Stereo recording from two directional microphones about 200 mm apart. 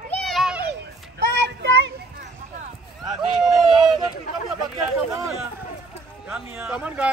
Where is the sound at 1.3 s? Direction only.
60° right (ahead or behind).